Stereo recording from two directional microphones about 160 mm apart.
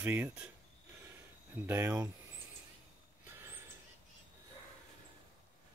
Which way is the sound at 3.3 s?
15° right (ahead or behind).